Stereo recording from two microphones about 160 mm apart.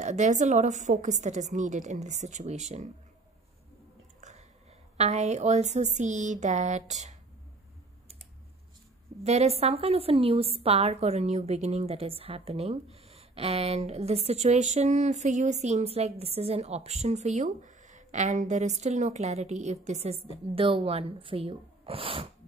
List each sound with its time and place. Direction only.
0.0 s a woman's voice: 45° right (ahead or behind)
4.2 s a sound: 45° right (ahead or behind)
4.9 s a woman's voice: 45° right (ahead or behind)
9.2 s a woman's voice: 40° right (ahead or behind)